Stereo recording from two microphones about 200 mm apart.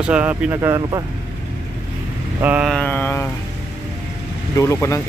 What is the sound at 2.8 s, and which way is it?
Speech, 10° left (ahead or behind).